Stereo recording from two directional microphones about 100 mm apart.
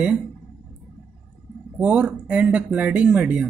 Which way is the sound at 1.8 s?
10° right (ahead or behind).